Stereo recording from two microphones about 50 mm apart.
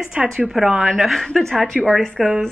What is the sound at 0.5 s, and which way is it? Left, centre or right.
A woman's voice, centre.